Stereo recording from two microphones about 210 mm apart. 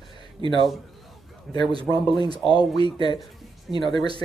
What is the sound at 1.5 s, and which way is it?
Speech, centre (ahead or behind).